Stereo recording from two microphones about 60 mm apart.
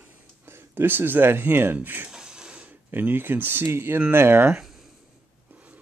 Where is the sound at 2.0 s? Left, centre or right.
Centre.